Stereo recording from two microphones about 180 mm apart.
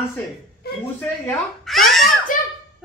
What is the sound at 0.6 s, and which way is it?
Speech, 60° left (ahead or behind).